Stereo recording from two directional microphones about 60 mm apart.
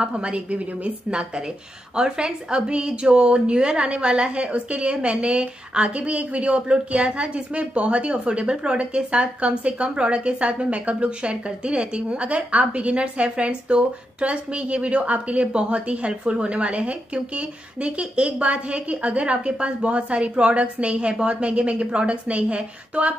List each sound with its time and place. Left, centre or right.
0.0 s a woman's voice: centre